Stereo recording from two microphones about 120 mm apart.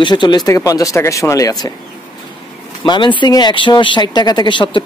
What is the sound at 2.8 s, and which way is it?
Speech, 40° left (ahead or behind).